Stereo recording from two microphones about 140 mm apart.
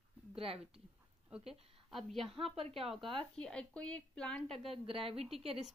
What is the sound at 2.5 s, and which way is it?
Speech, 45° right (ahead or behind).